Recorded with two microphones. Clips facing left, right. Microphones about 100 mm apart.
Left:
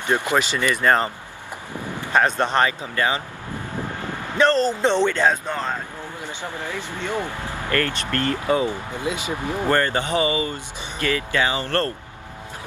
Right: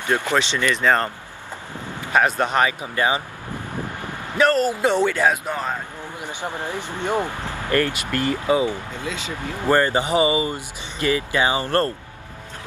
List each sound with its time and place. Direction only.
0.1 s speech: 15° left (ahead or behind)
2.1 s speech: 10° right (ahead or behind)
8.9 s speech: 15° left (ahead or behind)
9.7 s speech: 15° right (ahead or behind)